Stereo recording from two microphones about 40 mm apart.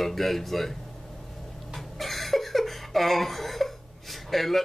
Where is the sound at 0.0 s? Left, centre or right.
Centre.